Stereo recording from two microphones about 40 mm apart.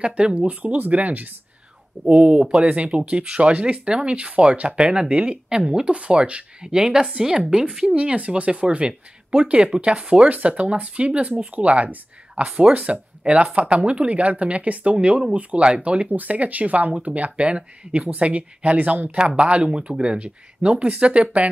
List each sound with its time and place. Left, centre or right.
0.0 s speech: right
2.0 s speech: right
13.2 s speech: right
16.1 s speech: right